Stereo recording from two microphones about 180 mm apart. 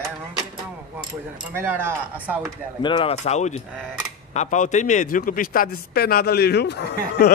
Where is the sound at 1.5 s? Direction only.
10° right (ahead or behind).